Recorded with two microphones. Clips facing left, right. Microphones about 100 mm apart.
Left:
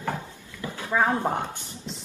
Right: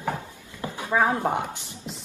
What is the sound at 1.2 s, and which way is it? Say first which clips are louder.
Speech: right 1 dB; 15° right (ahead or behind).